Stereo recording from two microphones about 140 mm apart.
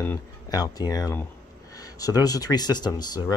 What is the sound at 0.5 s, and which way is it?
Speech, 25° left (ahead or behind).